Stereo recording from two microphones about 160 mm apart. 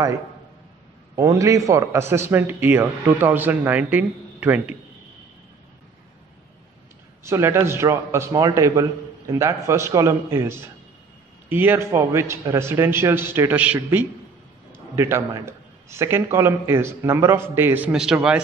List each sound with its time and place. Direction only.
1.1 s a man's voice: 20° right (ahead or behind)
7.2 s a man's voice: 15° right (ahead or behind)